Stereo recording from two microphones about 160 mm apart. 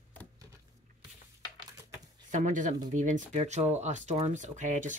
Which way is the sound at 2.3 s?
50° right (ahead or behind).